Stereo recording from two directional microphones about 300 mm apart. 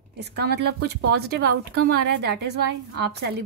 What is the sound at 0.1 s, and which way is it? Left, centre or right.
Speech, right.